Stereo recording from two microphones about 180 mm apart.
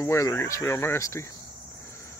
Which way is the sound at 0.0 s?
15° left (ahead or behind).